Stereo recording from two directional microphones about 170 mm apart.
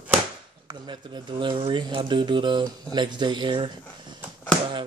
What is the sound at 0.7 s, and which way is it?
Speech, 25° right (ahead or behind).